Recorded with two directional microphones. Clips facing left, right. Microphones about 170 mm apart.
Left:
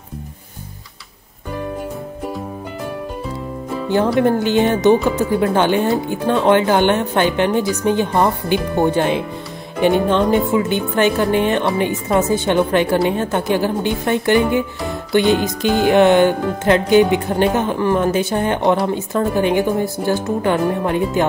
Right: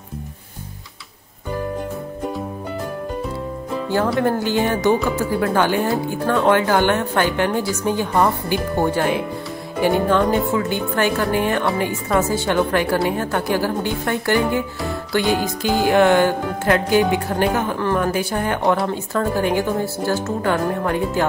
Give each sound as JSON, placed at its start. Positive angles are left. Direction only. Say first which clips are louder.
{"t": 4.2, "sound": "speech", "louder": "left 4 dB", "side_deg": 20}